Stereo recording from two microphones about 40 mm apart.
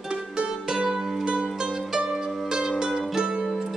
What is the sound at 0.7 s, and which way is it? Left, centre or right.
Music, centre.